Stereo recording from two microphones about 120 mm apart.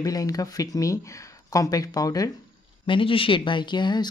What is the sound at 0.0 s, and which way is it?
Speech, 30° left (ahead or behind).